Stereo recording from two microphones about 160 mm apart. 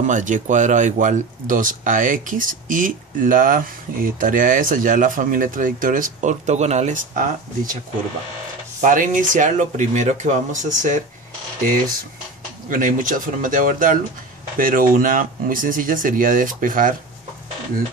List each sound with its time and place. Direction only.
0.0 s speech: 50° right (ahead or behind)
8.8 s speech: 55° right (ahead or behind)
12.6 s speech: 55° right (ahead or behind)